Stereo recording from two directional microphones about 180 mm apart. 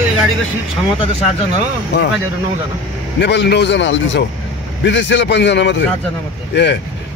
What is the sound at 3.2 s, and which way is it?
Speech, 70° left (ahead or behind).